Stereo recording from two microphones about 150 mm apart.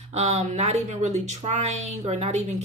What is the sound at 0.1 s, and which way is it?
Speech, 45° right (ahead or behind).